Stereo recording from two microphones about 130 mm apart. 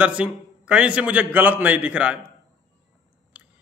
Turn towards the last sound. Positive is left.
turn(degrees=-10)  # may be behind; listen again after turning